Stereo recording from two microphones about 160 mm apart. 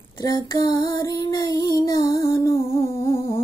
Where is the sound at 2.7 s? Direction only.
20° left (ahead or behind).